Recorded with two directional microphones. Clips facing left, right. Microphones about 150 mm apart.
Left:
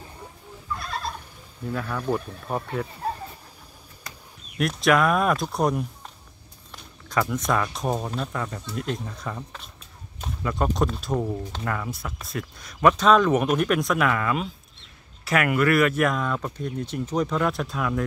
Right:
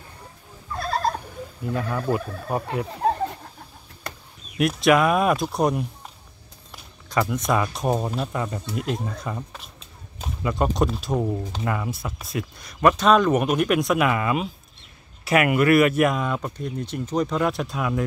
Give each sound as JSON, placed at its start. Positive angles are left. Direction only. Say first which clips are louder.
{"t": 0.8, "sound": "neigh", "louder": "right 10 dB", "side_deg": -40}
{"t": 1.7, "sound": "speech", "louder": "right 2 dB", "side_deg": -5}
{"t": 2.9, "sound": "a sound", "louder": "right 8 dB", "side_deg": -85}
{"t": 4.6, "sound": "speech", "louder": "right 3 dB", "side_deg": -5}
{"t": 17.6, "sound": "speech", "louder": "right 1 dB", "side_deg": -10}